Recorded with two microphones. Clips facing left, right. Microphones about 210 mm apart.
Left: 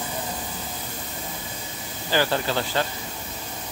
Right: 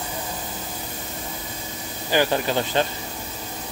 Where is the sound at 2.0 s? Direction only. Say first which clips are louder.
Right 2 dB; 15° right (ahead or behind).